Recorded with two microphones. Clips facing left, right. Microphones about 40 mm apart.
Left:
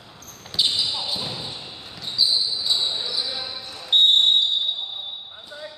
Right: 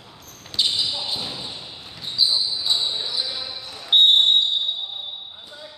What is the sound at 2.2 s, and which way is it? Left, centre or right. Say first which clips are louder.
Basketball bounce: right 1 dB; centre.